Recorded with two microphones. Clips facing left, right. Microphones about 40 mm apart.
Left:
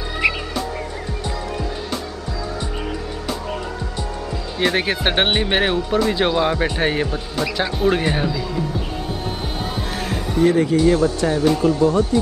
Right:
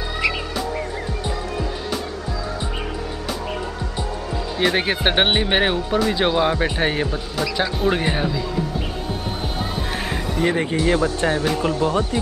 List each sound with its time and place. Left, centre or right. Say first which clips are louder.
4.6 s speech: left 1 dB; centre
10.0 s music: left 5 dB; right
11.1 s speech: left 3 dB; right